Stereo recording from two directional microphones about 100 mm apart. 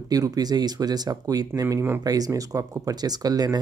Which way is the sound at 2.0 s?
40° right (ahead or behind).